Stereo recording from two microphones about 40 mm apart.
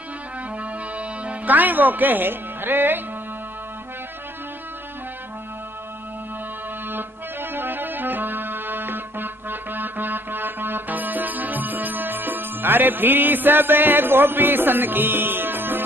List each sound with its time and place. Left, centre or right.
0.6 s music: right
6.9 s music: right